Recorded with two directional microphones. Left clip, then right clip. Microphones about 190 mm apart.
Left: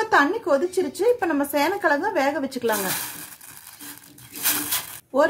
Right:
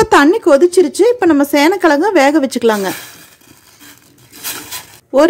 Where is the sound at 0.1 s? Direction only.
50° right (ahead or behind).